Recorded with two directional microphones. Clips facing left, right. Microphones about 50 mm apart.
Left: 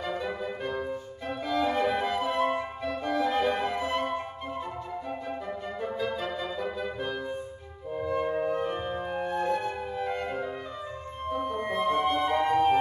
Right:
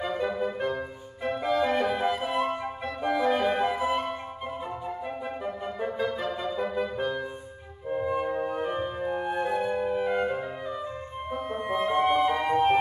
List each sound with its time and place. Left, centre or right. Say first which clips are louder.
0.2 s music: right 5 dB; right
2.0 s flute: right 1 dB; centre
3.0 s flute: right 2 dB; right
7.9 s music: right 1 dB; centre
9.2 s flute: even; centre
11.2 s music: left 1 dB; centre